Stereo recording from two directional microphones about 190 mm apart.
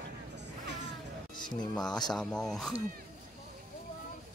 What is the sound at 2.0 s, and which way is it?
Speech, 5° left (ahead or behind).